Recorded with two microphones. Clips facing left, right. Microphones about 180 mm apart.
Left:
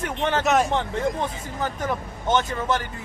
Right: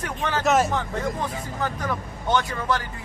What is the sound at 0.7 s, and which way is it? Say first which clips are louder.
Speech: left 2 dB; 25° left (ahead or behind).